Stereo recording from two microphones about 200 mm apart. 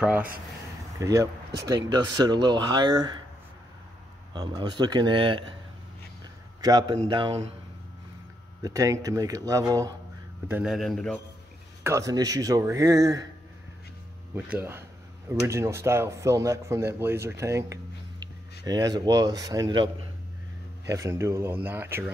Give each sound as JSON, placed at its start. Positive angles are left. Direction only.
{"t": 0.0, "sound": "speech", "side_deg": -5}
{"t": 4.3, "sound": "speech", "side_deg": -20}
{"t": 6.6, "sound": "speech", "side_deg": -20}
{"t": 8.6, "sound": "speech", "side_deg": -15}
{"t": 10.5, "sound": "speech", "side_deg": 0}
{"t": 11.8, "sound": "speech", "side_deg": -15}
{"t": 14.3, "sound": "a man's voice", "side_deg": -10}